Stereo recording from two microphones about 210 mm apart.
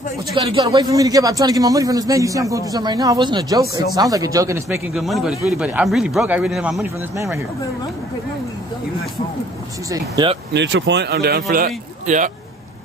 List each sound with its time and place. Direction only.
0.4 s a man's voice: 25° right (ahead or behind)
4.9 s speech: centre (ahead or behind)
10.5 s a man's voice: 55° right (ahead or behind); by 12.3 s 40° right (ahead or behind)